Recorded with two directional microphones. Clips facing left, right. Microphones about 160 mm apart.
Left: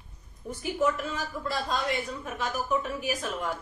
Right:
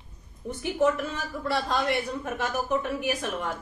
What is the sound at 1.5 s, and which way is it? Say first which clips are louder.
A woman's voice: right 4 dB; 65° right (ahead or behind).